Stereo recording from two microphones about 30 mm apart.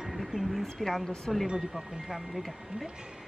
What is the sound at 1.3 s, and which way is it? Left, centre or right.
Speech, centre.